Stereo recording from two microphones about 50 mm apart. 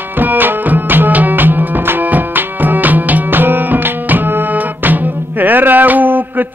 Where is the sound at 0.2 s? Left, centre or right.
Right.